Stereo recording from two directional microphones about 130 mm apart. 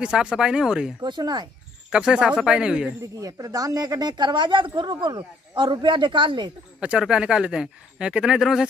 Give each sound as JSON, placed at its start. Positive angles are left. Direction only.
{"t": 0.0, "sound": "speech", "side_deg": -5}
{"t": 1.0, "sound": "speech", "side_deg": -35}
{"t": 1.9, "sound": "speech", "side_deg": -5}
{"t": 3.2, "sound": "speech", "side_deg": -25}
{"t": 6.8, "sound": "speech", "side_deg": -10}